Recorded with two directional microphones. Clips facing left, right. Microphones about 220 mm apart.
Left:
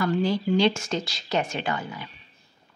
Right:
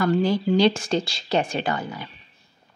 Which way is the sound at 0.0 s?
45° right (ahead or behind).